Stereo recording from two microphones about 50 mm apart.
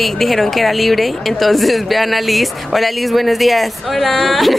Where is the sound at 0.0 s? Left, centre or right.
Centre.